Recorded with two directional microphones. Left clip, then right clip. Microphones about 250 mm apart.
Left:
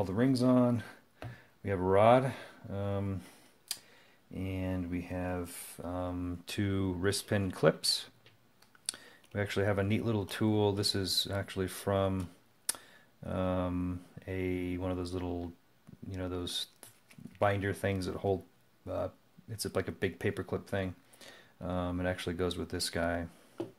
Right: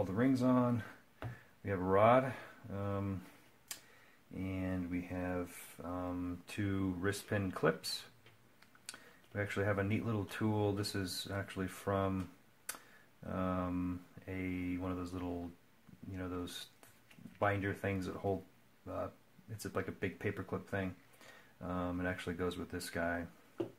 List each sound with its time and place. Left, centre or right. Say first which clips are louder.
0.0 s speech: left 4 dB; left
4.3 s speech: left 3 dB; left
19.5 s speech: left 5 dB; left